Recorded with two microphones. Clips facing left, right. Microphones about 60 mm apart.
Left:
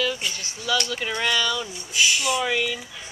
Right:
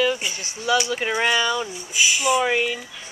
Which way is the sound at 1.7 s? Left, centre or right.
Centre.